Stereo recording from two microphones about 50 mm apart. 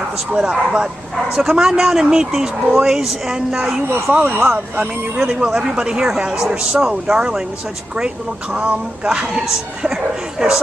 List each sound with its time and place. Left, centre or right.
0.3 s speech: centre
4.2 s speech: right
5.3 s speech: centre
8.5 s speech: centre
10.4 s speech: centre